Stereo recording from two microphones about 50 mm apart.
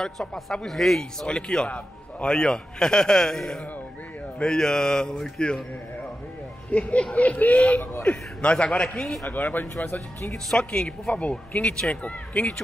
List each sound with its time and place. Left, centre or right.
0.0 s speech: centre
1.2 s speech: centre
1.7 s a man's voice: left
2.3 s speech: centre
6.7 s speech: left
9.3 s speech: left
10.3 s speech: centre